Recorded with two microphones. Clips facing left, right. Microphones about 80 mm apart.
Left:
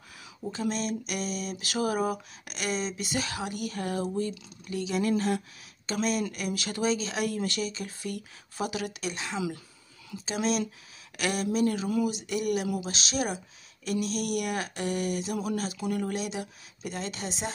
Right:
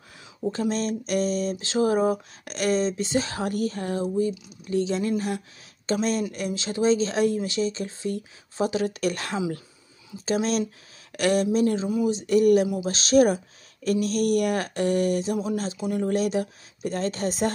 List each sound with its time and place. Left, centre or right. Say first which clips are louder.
0.5 s speech: right 5 dB; right
2.4 s speech: right 8 dB; right
7.3 s speech: right 4 dB; centre
7.6 s a woman's voice: right 7 dB; right
11.8 s speech: right 4 dB; right
15.3 s speech: right 4 dB; right
16.1 s a woman's voice: right 9 dB; right